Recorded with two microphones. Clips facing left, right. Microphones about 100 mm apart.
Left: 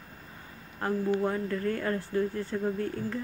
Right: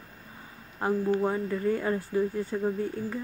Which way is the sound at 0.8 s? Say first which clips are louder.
Right 2 dB; 15° right (ahead or behind).